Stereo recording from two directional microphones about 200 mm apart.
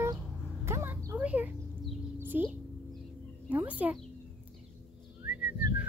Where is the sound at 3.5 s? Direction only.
10° right (ahead or behind).